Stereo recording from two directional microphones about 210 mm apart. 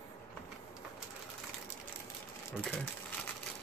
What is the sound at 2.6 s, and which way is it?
Speech, 10° left (ahead or behind).